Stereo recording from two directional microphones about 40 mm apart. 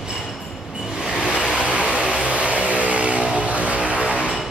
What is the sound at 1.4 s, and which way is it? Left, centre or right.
Vehicle, left.